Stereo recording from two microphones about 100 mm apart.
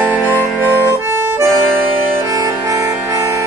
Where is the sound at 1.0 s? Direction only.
25° right (ahead or behind).